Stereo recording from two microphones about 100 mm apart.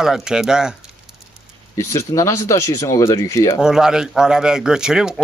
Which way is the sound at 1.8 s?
30° left (ahead or behind).